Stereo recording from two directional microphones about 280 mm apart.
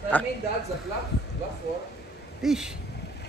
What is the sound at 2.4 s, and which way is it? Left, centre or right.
Speech, centre.